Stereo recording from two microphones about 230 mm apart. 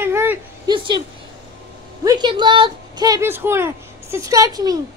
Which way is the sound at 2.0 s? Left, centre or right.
Centre.